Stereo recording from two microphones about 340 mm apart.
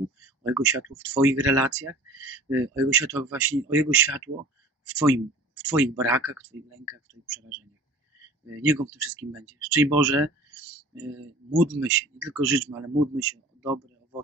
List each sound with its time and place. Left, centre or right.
0.4 s speech: centre
8.6 s speech: centre
11.8 s a man's voice: centre